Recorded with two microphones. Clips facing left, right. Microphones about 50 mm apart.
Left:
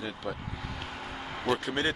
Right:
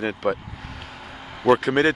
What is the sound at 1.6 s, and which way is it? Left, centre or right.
Speech, right.